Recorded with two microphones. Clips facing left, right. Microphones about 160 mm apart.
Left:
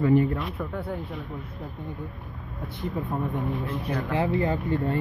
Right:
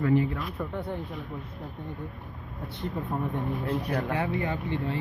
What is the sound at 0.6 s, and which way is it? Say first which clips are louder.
Speech: left 1 dB; centre (ahead or behind).